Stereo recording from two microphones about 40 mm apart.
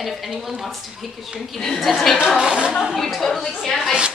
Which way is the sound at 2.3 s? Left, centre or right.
Right.